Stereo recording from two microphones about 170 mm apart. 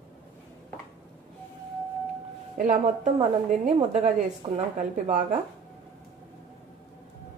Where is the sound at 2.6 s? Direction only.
50° right (ahead or behind).